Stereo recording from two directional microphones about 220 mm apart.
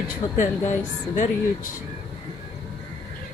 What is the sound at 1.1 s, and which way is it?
Speech, 35° left (ahead or behind).